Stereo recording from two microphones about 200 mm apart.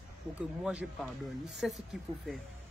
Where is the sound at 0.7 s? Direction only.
5° right (ahead or behind).